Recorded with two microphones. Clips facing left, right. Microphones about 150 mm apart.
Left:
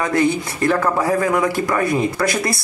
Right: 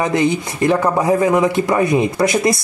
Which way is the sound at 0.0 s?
20° right (ahead or behind).